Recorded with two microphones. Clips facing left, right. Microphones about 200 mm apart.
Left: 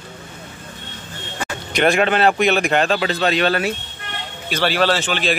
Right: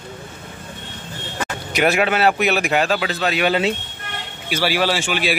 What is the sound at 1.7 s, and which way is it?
A man's voice, 5° right (ahead or behind).